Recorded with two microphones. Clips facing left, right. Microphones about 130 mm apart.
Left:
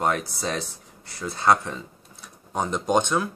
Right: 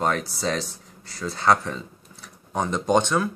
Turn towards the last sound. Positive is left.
turn(degrees=15)  # may be behind; listen again after turning